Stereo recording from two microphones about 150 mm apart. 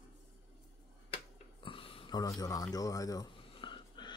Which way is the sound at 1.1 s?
35° left (ahead or behind).